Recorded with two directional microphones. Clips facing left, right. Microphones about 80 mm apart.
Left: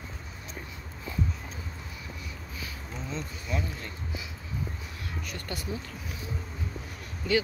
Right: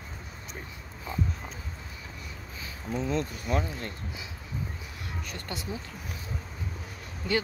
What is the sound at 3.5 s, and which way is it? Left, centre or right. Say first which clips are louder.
Speech: right 2 dB; right.